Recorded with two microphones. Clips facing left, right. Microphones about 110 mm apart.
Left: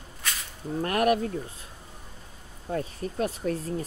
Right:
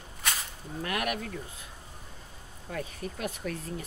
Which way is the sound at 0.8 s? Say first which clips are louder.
Left 8 dB; 40° left (ahead or behind).